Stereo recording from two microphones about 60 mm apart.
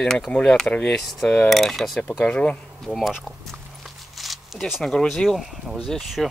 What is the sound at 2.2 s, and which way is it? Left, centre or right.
Speech, centre.